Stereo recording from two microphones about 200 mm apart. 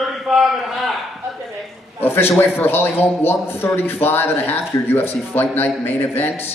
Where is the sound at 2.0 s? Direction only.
10° left (ahead or behind).